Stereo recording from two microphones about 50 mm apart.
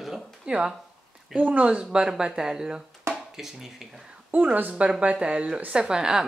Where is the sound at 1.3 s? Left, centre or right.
Right; by 4.0 s centre.